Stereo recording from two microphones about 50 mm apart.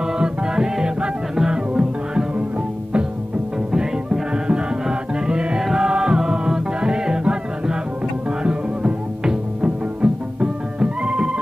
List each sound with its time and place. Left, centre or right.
0.0 s music: centre
3.7 s music: centre